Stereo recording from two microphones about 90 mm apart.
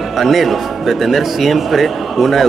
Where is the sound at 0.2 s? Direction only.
Centre (ahead or behind).